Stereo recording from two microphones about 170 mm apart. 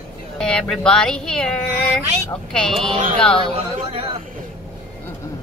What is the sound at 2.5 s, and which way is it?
Speech, 5° left (ahead or behind).